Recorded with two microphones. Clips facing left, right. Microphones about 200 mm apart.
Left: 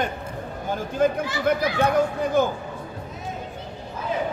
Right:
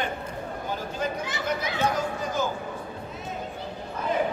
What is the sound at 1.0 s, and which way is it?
Speech, 50° left (ahead or behind).